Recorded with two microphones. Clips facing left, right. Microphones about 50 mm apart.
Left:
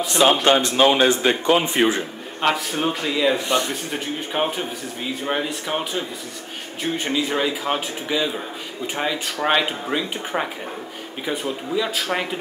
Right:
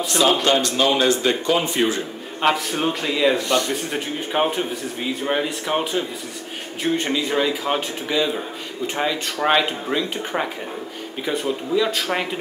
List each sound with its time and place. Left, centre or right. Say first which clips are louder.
0.2 s speech: left 2 dB; left
2.4 s speech: right 1 dB; centre
3.3 s speech: right 1 dB; left
3.9 s speech: right 2 dB; centre